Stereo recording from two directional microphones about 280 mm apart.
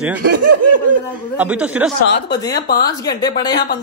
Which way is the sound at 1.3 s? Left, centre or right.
Centre.